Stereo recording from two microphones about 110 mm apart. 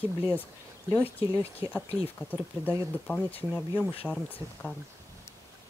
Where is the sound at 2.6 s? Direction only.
15° left (ahead or behind).